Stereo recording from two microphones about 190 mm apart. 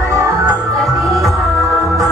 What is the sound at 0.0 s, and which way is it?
Music, 15° right (ahead or behind).